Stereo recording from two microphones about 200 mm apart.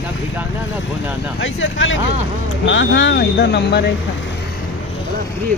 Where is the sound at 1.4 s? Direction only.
70° left (ahead or behind).